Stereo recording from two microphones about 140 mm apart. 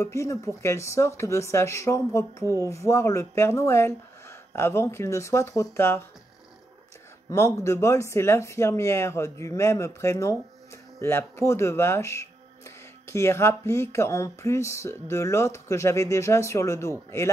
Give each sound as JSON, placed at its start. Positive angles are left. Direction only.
{"t": 0.0, "sound": "speech", "side_deg": 20}
{"t": 7.2, "sound": "speech", "side_deg": 20}